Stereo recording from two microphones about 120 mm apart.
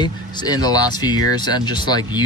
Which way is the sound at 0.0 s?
35° left (ahead or behind).